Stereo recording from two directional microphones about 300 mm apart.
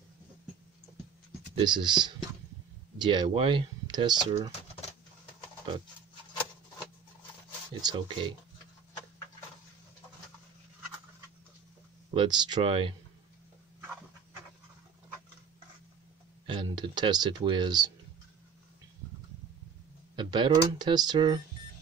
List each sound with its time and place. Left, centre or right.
1.5 s speech: centre
7.8 s speech: centre
12.1 s speech: centre
16.4 s speech: centre
20.2 s speech: centre